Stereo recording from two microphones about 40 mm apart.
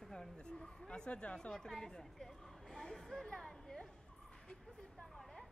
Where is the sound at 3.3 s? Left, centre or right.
Centre.